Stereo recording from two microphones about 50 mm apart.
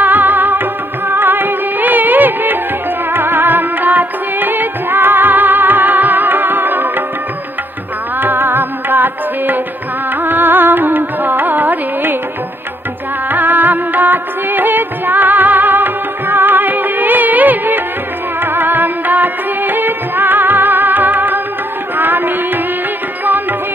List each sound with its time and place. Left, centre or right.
0.0 s music: right
8.2 s music: right
13.3 s music: right